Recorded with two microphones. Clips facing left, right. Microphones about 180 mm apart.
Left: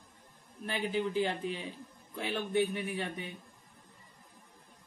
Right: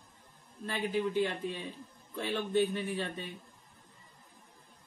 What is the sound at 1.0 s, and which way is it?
Speech, 20° left (ahead or behind).